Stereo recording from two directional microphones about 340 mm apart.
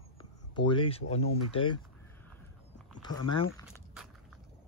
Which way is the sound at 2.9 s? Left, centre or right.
Centre.